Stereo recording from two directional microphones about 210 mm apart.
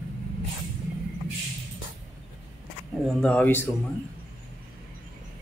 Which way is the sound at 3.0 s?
5° left (ahead or behind).